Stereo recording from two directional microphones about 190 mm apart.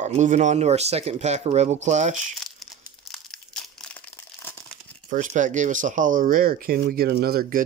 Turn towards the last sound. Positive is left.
turn(degrees=-50)  # may be behind; listen again after turning